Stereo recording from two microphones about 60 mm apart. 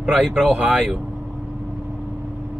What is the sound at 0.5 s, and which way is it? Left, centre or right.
Speech, right.